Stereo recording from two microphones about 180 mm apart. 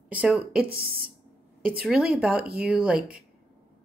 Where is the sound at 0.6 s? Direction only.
55° right (ahead or behind).